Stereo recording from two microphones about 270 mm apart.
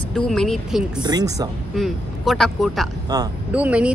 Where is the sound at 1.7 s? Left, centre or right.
Centre.